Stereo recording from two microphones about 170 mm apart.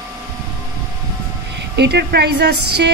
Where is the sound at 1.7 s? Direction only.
75° right (ahead or behind).